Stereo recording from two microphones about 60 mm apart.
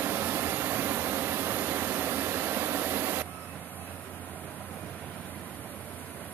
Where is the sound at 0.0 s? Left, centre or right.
Right.